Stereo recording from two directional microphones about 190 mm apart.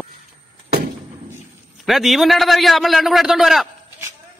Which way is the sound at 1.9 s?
Centre (ahead or behind).